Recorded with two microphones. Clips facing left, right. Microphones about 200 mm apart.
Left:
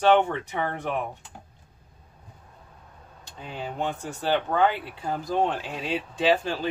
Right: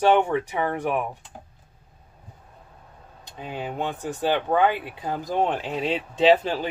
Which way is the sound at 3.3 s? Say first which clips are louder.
Right 2 dB; 15° right (ahead or behind).